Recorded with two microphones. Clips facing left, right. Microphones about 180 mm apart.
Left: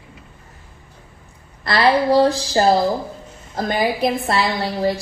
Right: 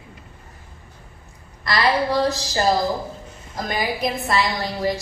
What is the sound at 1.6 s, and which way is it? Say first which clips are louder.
A woman's voice: left 4 dB; 30° left (ahead or behind).